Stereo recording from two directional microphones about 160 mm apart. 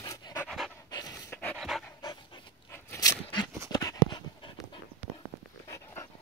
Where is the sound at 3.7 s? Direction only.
25° left (ahead or behind).